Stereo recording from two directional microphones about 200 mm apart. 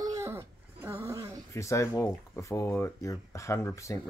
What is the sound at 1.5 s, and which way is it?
Speech, 15° left (ahead or behind).